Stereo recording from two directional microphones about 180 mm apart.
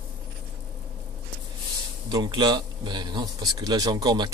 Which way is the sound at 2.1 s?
25° right (ahead or behind).